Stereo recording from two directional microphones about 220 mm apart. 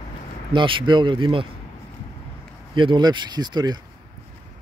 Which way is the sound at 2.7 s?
20° right (ahead or behind).